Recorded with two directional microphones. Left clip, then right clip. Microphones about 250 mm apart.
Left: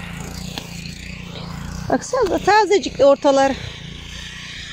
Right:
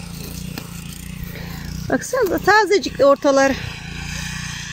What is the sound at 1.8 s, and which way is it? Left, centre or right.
Speech, centre.